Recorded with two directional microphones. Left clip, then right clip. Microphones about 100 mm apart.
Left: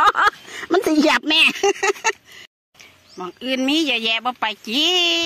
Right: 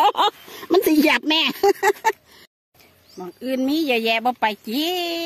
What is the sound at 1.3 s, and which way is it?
Speech, 25° right (ahead or behind).